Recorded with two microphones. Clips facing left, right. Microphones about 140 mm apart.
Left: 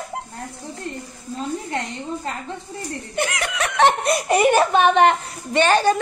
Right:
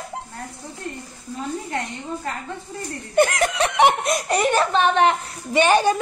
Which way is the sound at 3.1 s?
45° right (ahead or behind).